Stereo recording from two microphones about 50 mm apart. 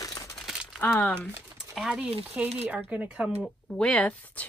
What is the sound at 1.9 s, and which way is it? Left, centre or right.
Speech, right.